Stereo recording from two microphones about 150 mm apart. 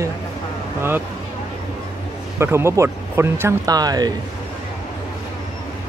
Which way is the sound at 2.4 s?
15° right (ahead or behind).